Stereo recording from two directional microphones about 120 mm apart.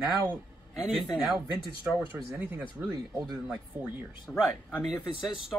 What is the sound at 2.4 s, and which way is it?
Speech, 20° right (ahead or behind).